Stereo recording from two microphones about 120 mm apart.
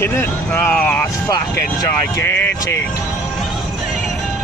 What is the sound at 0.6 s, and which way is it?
Vehicle, 15° left (ahead or behind).